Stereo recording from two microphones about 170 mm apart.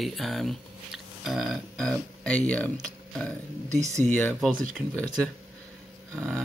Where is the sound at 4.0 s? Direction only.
10° left (ahead or behind).